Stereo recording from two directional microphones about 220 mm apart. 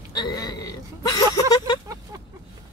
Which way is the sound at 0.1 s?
20° left (ahead or behind).